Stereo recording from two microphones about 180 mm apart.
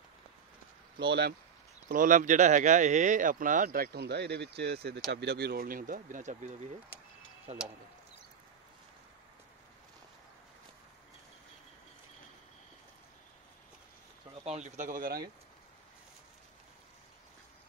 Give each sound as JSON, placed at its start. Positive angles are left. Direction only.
{"t": 1.9, "sound": "speech", "side_deg": -50}
{"t": 14.4, "sound": "speech", "side_deg": -40}